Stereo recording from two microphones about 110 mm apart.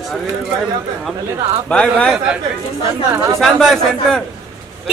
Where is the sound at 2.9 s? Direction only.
30° right (ahead or behind).